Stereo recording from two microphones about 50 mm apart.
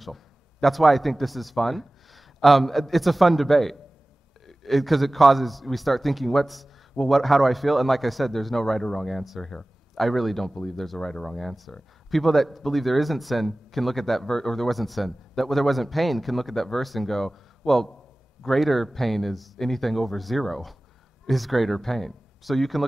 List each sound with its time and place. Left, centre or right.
0.0 s a man's voice: centre
9.4 s a sound: centre
10.0 s speech: centre
11.0 s speech: centre
11.2 s speech: centre